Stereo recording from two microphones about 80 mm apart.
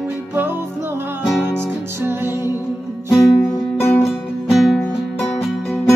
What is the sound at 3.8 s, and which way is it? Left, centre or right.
Music, left.